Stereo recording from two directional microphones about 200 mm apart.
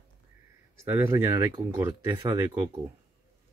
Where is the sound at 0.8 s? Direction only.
10° right (ahead or behind).